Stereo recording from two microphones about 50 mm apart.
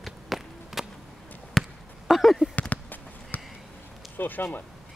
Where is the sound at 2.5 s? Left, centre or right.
Left.